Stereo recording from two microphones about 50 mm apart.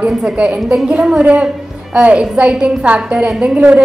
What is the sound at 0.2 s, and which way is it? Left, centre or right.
A woman's voice, centre.